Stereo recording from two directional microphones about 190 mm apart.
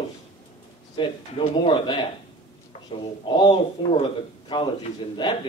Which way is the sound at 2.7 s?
35° left (ahead or behind).